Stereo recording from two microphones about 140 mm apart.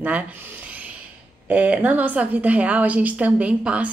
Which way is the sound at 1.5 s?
10° right (ahead or behind).